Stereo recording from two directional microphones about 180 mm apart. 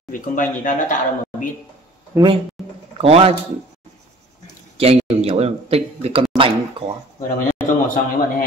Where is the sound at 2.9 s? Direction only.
35° right (ahead or behind).